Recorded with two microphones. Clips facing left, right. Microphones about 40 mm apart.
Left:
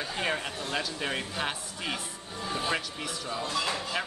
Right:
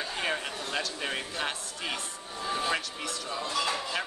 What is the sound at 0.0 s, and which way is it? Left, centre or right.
Speech, centre.